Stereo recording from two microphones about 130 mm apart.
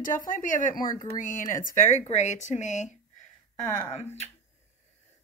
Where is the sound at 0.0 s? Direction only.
90° left.